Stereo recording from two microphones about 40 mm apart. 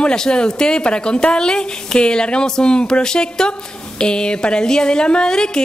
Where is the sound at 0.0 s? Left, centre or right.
Centre.